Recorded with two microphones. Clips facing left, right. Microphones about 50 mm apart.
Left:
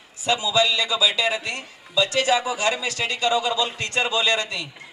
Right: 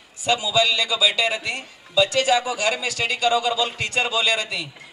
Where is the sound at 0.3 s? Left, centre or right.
Centre.